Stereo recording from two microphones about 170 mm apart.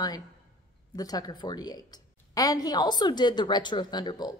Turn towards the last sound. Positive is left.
turn(degrees=25)  # may be behind; listen again after turning